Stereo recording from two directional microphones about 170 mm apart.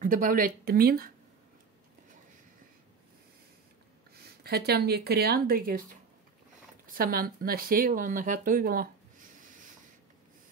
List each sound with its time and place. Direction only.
0.0 s speech: 50° right (ahead or behind)
4.1 s speech: 70° right (ahead or behind)